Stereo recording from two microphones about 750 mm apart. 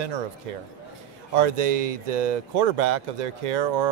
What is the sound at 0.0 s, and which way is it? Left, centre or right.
Speech, right.